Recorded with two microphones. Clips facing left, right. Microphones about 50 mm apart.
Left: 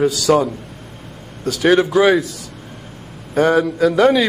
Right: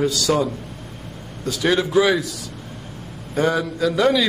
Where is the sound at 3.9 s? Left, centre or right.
Left.